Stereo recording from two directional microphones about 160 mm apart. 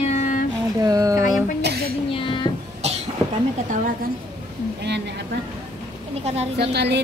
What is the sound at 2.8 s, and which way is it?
Cough, 40° right (ahead or behind).